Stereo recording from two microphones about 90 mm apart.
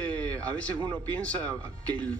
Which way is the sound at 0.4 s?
15° left (ahead or behind).